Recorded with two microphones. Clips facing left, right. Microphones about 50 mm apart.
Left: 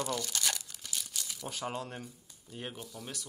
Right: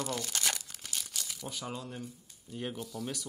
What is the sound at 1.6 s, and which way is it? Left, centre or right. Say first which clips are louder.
Speech: left 4 dB; left.